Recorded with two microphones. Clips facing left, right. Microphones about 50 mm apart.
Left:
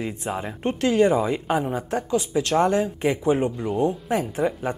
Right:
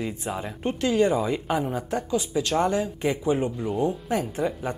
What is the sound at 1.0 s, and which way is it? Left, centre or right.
Speech, left.